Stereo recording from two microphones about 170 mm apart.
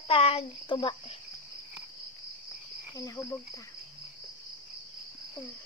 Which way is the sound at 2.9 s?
20° left (ahead or behind).